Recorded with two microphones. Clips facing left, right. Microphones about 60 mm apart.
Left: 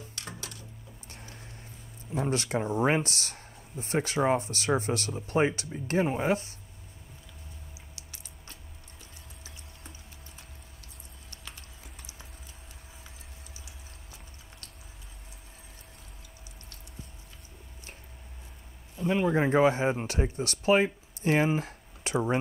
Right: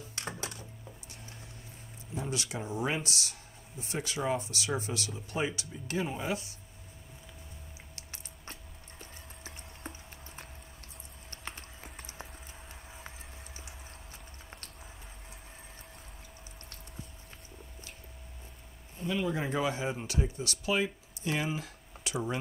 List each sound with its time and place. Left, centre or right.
0.4 s a sound: right
1.0 s music: left
2.1 s speech: left
7.9 s a sound: right
9.4 s clip-clop: right
18.9 s speech: left